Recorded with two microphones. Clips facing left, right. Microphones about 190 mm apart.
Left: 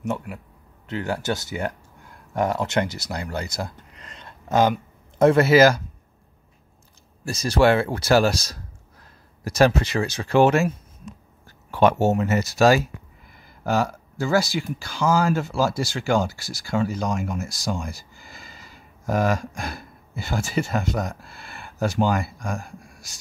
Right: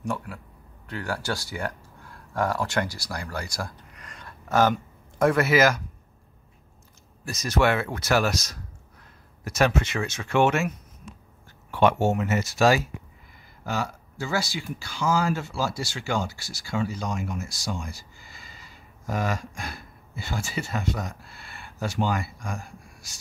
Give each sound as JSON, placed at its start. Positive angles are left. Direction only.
{"t": 0.0, "sound": "speech", "side_deg": 20}
{"t": 7.2, "sound": "speech", "side_deg": 30}